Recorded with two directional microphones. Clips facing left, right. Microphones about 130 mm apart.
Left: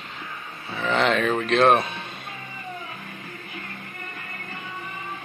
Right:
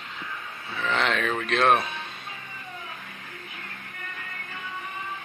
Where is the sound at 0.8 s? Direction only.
Centre (ahead or behind).